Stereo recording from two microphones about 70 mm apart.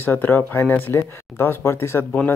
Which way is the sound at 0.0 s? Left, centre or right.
Left.